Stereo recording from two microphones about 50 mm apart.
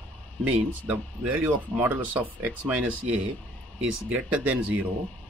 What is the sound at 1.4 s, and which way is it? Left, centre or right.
Speech, right.